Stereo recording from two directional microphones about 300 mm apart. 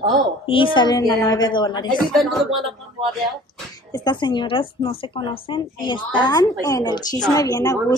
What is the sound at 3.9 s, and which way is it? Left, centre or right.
Speech, centre.